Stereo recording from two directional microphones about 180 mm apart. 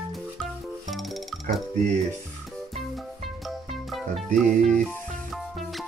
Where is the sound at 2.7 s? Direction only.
Centre (ahead or behind).